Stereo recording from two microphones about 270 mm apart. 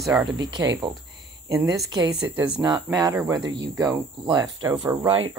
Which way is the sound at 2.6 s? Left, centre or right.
Centre.